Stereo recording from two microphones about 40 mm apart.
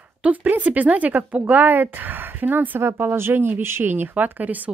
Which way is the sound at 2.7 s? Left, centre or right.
Right.